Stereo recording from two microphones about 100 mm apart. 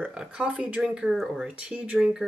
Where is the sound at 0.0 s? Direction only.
10° right (ahead or behind).